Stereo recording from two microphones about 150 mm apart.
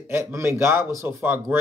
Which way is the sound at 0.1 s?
15° right (ahead or behind).